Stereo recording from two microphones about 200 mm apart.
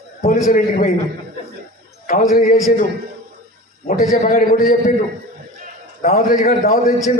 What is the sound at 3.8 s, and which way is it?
Speech, 45° left (ahead or behind).